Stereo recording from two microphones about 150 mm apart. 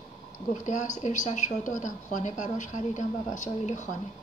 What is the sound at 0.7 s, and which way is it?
A woman's voice, 55° left (ahead or behind).